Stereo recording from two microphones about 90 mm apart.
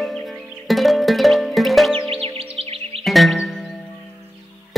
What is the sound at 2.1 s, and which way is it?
Music, 90° right.